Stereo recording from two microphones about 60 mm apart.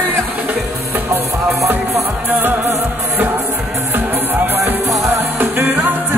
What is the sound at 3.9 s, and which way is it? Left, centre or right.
Music, right.